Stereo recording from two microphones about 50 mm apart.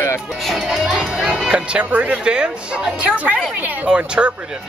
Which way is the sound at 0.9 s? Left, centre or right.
Centre.